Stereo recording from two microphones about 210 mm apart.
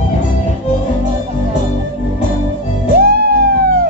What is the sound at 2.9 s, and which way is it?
Music, 50° right (ahead or behind).